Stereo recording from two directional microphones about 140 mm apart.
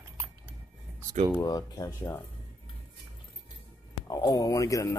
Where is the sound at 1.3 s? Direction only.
25° left (ahead or behind).